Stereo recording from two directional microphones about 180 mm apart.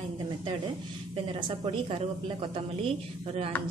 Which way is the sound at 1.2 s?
30° right (ahead or behind).